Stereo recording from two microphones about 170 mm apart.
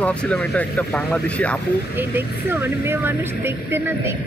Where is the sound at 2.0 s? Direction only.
15° right (ahead or behind).